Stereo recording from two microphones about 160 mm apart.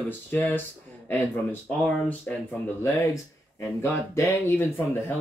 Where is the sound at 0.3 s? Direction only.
10° left (ahead or behind).